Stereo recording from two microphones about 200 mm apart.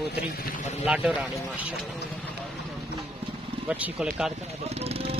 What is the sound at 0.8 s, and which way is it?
Speech, 5° right (ahead or behind).